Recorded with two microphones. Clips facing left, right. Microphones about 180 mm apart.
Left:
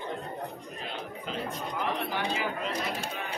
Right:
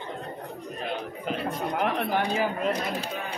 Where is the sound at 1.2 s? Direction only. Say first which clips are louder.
Right 6 dB; 65° right (ahead or behind).